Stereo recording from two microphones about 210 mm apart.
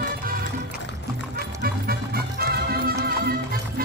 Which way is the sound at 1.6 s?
45° right (ahead or behind).